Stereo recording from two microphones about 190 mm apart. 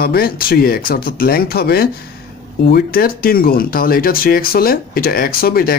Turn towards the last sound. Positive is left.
turn(degrees=50)  # may be behind; listen again after turning